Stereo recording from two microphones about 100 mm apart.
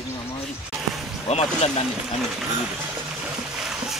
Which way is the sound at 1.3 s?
90° left.